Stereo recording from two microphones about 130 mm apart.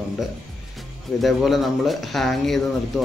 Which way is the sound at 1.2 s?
Centre (ahead or behind).